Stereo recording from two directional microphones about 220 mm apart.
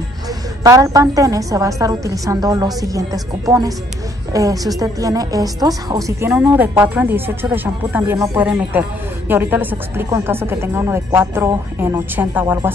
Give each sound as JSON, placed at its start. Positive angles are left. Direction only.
{"t": 0.7, "sound": "speech", "side_deg": -15}